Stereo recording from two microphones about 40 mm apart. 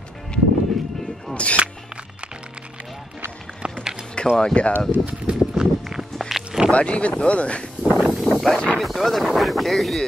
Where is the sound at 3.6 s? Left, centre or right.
Right.